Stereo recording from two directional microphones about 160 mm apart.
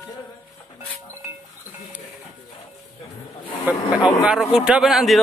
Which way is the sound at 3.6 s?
5° right (ahead or behind).